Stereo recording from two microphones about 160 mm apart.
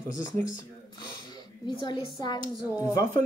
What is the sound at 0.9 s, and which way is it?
A child's voice, 30° left (ahead or behind).